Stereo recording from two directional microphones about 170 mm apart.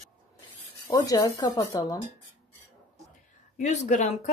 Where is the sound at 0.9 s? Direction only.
20° left (ahead or behind).